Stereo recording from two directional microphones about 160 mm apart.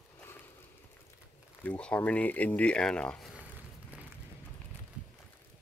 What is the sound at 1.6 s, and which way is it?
Speech, 5° left (ahead or behind).